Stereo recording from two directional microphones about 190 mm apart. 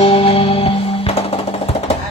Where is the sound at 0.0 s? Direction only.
30° left (ahead or behind).